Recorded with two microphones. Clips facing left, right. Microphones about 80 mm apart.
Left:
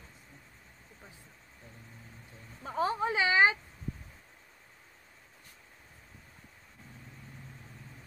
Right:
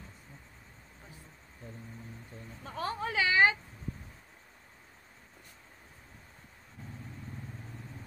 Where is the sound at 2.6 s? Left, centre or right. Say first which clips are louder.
Left 5 dB; left.